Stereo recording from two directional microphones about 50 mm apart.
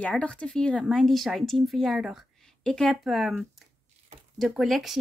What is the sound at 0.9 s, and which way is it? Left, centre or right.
Speech, centre.